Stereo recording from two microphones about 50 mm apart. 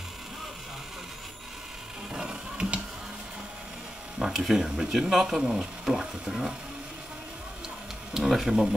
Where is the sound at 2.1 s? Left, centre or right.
Centre.